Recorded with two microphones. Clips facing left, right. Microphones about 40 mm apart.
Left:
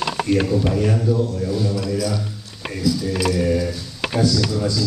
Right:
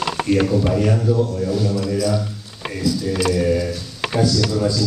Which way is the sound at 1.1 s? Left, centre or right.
Right.